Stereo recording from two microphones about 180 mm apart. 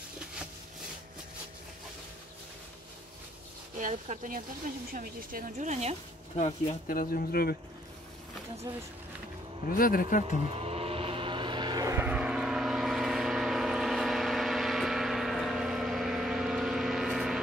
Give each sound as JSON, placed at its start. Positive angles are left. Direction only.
{"t": 3.7, "sound": "speech", "side_deg": -45}
{"t": 6.3, "sound": "speech", "side_deg": 45}
{"t": 8.7, "sound": "speech", "side_deg": -20}
{"t": 9.7, "sound": "speech", "side_deg": 50}
{"t": 10.5, "sound": "vehicle", "side_deg": -35}